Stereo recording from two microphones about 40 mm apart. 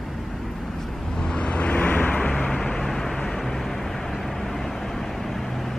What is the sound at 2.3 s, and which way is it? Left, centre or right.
Vehicle, centre.